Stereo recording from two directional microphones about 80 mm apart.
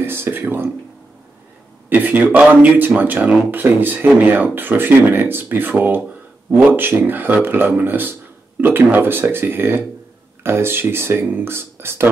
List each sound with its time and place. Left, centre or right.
0.0 s speech: right
1.9 s speech: right